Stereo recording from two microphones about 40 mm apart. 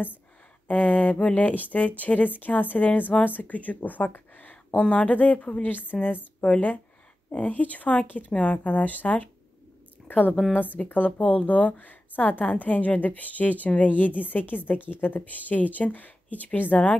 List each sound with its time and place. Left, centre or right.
0.7 s a woman's voice: left
3.3 s a woman's voice: left
4.6 s a woman's voice: left
6.4 s speech: left
7.2 s a woman's voice: left